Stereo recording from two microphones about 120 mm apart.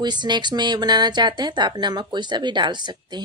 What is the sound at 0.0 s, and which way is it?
Speech, 40° right (ahead or behind).